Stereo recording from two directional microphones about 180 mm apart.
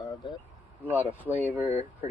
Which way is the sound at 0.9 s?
10° right (ahead or behind).